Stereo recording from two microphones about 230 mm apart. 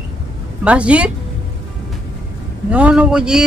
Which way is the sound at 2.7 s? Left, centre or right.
Centre.